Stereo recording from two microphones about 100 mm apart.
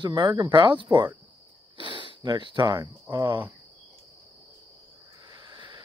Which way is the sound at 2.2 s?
50° right (ahead or behind).